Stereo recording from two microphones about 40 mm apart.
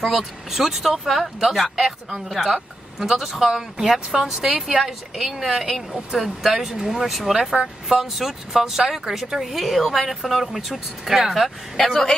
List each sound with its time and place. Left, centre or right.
0.0 s speech: centre
11.7 s a woman's voice: centre